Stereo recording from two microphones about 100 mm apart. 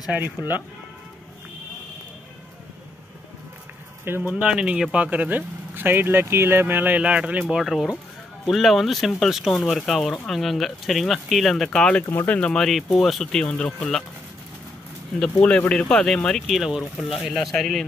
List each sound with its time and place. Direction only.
4.0 s speech: 20° right (ahead or behind); by 12.0 s 5° left (ahead or behind)
12.1 s speech: 25° left (ahead or behind)
12.4 s speech: 5° left (ahead or behind)
15.4 s speech: 10° left (ahead or behind)